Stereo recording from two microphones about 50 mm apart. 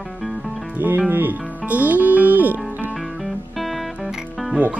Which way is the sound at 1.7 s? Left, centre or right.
Right.